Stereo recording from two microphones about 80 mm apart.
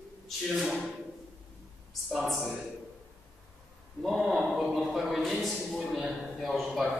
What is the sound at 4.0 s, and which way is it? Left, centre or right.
A man's voice, centre.